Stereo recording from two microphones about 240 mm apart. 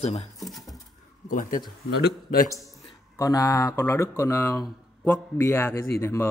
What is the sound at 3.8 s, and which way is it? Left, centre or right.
A man's voice, centre.